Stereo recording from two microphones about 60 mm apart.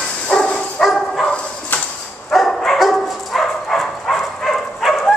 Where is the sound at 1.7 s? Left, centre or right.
Left.